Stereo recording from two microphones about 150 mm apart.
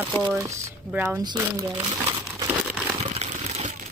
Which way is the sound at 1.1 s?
25° right (ahead or behind).